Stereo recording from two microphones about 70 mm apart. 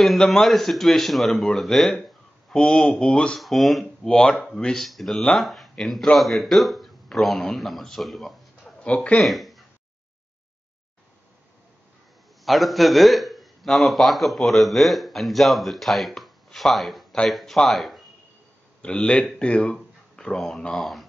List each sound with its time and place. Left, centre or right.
0.0 s a man's voice: centre
3.3 s a man's voice: centre
8.8 s speech: centre
9.2 s a sound: centre
12.4 s a man's voice: centre
18.8 s a man's voice: centre